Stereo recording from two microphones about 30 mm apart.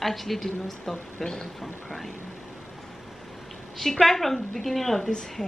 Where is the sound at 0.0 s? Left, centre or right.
Centre.